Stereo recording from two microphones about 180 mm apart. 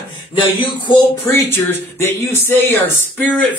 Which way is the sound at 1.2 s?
10° left (ahead or behind).